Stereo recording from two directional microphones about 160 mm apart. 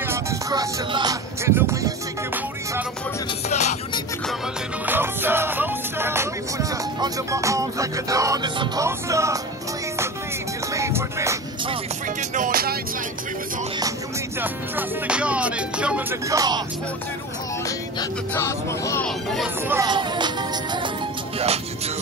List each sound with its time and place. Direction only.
0.0 s music: 15° right (ahead or behind)
3.4 s music: 45° left (ahead or behind)
4.8 s music: 10° right (ahead or behind)
10.7 s music: 15° right (ahead or behind)
12.2 s music: 60° right (ahead or behind)
14.4 s music: 10° right (ahead or behind)
16.3 s speech: 25° right (ahead or behind)
18.3 s speech: 15° left (ahead or behind)
19.0 s speech: centre (ahead or behind)
19.7 s speech: 25° right (ahead or behind)
21.4 s music: 40° right (ahead or behind)